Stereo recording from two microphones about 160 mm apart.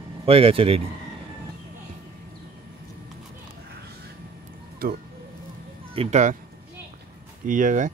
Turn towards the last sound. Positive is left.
turn(degrees=-50)  # may be behind; listen again after turning